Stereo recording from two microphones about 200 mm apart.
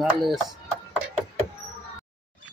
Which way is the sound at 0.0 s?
Centre (ahead or behind).